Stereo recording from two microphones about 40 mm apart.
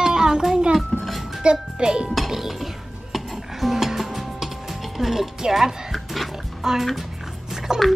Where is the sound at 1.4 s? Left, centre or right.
Centre.